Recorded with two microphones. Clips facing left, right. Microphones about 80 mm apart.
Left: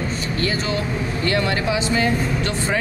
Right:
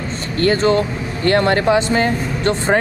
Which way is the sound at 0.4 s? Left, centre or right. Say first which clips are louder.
Right 10 dB; right.